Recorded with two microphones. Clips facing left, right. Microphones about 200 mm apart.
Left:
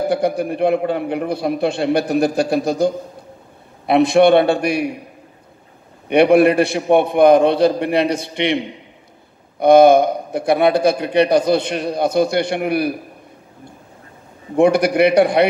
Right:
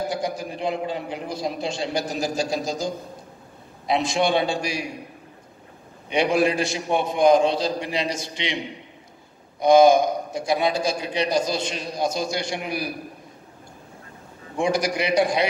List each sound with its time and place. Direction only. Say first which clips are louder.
0.1 s a man's voice: left 9 dB; 60° left (ahead or behind)
6.0 s a man's voice: left 9 dB; 60° left (ahead or behind)
9.6 s a man's voice: left 5 dB; 60° left (ahead or behind)
14.6 s a man's voice: left 10 dB; 60° left (ahead or behind)